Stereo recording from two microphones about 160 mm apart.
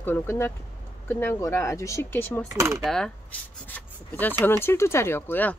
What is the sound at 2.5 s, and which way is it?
Coin, 20° right (ahead or behind).